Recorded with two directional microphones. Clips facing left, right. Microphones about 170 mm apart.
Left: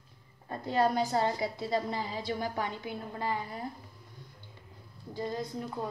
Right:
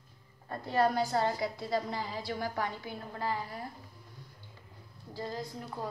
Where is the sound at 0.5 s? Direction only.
20° left (ahead or behind).